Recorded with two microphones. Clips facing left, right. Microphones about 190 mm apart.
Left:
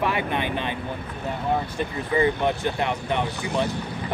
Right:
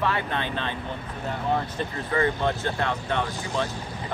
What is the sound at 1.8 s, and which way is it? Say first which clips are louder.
Speech: left 3 dB; 15° left (ahead or behind).